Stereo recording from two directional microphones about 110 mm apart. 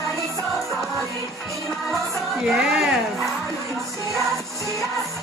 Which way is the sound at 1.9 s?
5° right (ahead or behind).